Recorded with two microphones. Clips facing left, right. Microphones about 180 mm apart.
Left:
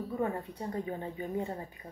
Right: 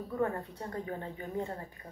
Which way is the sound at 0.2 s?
15° left (ahead or behind).